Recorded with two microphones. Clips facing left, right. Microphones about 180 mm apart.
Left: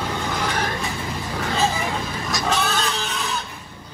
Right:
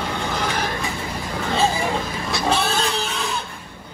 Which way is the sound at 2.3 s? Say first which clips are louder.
Right 2 dB; 30° right (ahead or behind).